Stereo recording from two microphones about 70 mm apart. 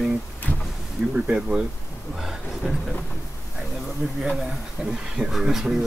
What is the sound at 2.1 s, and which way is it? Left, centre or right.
Speech, centre.